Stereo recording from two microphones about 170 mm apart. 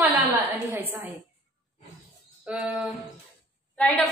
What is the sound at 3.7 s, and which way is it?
Speech, 5° left (ahead or behind).